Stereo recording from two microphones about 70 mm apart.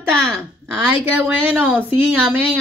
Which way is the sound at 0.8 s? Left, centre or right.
Right.